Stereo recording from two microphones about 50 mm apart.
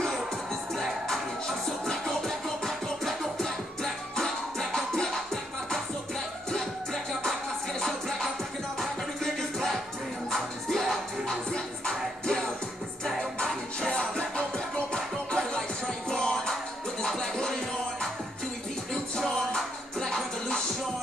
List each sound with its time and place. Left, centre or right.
1.9 s music: centre
11.5 s music: centre
19.1 s music: centre